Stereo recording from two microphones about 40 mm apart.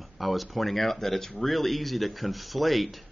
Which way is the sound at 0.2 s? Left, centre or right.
Centre.